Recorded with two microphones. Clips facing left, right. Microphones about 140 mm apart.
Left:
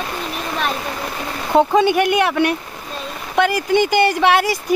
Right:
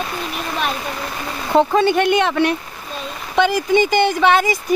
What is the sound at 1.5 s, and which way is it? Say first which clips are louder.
Speech: left 1 dB; 15° left (ahead or behind).